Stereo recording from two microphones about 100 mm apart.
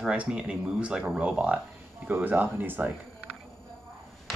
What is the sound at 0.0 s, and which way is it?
Speech, 10° right (ahead or behind).